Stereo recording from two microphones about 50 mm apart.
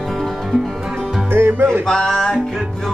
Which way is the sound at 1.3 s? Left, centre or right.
Right.